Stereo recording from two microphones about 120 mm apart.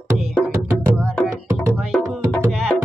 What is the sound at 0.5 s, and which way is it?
Music, 20° right (ahead or behind).